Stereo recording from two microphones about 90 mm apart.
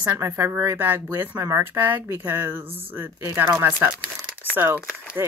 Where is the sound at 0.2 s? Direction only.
25° right (ahead or behind).